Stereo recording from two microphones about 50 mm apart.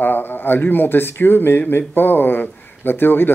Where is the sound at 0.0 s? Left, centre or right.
Left.